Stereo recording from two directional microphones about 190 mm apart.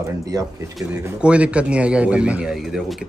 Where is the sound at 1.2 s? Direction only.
5° right (ahead or behind).